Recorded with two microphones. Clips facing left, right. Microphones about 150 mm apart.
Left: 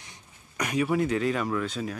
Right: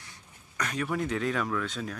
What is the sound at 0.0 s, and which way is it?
Speech, 15° left (ahead or behind).